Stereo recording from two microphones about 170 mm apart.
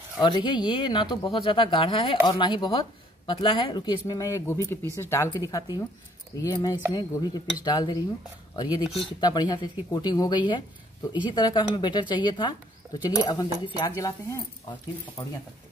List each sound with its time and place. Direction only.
0.2 s speech: 25° left (ahead or behind)
8.8 s speech: centre (ahead or behind)
9.2 s speech: 25° left (ahead or behind)